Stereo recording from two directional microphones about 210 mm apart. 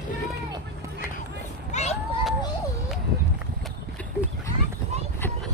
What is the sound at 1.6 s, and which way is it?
Run, 30° left (ahead or behind).